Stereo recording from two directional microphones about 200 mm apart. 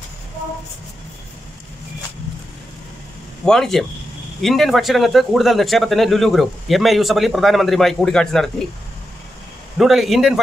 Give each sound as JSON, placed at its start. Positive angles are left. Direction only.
{"t": 3.4, "sound": "speech", "side_deg": 0}
{"t": 9.8, "sound": "speech", "side_deg": 0}